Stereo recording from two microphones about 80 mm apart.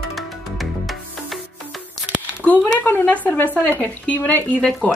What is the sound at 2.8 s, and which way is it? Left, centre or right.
Speech, left.